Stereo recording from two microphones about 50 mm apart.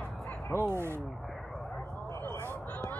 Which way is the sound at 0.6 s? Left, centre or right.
Right.